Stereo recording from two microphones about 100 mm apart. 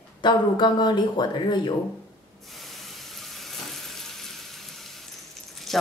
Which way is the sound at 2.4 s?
Centre (ahead or behind).